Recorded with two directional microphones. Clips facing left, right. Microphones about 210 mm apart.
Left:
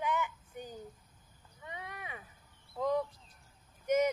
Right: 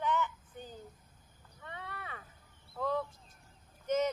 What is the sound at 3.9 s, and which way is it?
Vehicle, 10° left (ahead or behind).